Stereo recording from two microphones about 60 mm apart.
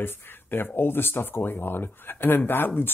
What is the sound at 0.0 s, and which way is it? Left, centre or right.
Speech, left.